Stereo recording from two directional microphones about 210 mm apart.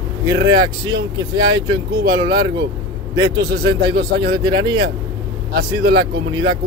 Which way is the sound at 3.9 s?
50° right (ahead or behind).